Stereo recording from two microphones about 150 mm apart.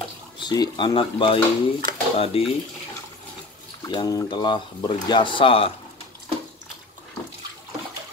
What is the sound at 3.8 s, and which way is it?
Speech, 30° left (ahead or behind).